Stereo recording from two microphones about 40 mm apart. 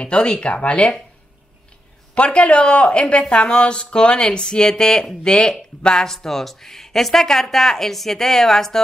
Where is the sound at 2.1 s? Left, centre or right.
Left.